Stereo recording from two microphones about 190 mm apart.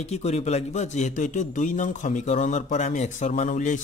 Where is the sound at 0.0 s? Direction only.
35° left (ahead or behind).